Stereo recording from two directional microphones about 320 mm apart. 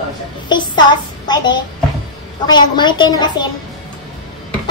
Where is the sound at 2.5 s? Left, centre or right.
Centre.